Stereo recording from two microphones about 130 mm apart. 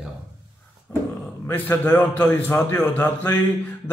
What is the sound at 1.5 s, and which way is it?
A man's voice, 15° left (ahead or behind).